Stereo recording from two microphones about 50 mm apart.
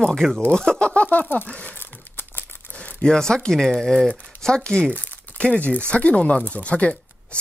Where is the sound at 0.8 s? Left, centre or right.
Left.